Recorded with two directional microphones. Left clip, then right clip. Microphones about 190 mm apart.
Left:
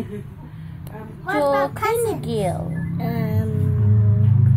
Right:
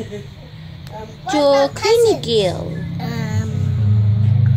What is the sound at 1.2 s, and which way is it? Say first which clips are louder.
A child's voice: right 5 dB; 30° right (ahead or behind).